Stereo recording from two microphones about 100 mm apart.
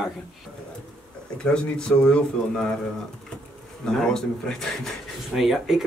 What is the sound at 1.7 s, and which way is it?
Speech, 10° left (ahead or behind).